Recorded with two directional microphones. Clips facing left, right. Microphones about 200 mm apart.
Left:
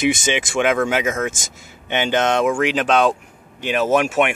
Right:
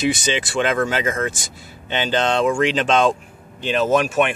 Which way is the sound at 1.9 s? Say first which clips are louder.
Left 1 dB; 15° left (ahead or behind).